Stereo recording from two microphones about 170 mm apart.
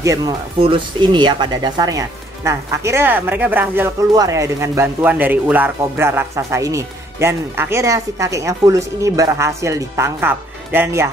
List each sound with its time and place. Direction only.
0.0 s speech: 20° right (ahead or behind)
0.6 s speech: 30° right (ahead or behind); by 11.1 s 15° right (ahead or behind)